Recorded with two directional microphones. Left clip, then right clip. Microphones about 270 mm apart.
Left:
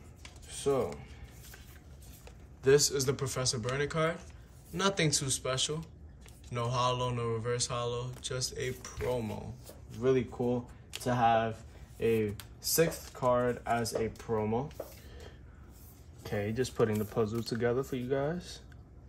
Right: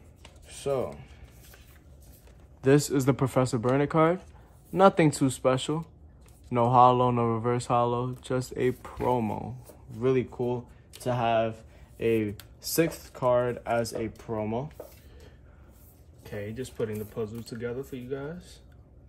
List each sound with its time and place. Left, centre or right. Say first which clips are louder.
0.5 s a sound: right 1 dB; centre
2.6 s speech: right 3 dB; right
4.7 s mantra: right 9 dB; centre
10.0 s speech: right 3 dB; right
16.2 s speech: left 3 dB; left